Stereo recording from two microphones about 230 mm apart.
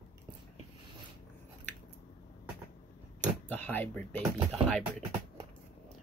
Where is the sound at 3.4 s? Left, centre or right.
Centre.